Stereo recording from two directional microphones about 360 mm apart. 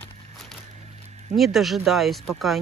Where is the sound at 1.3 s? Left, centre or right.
Centre.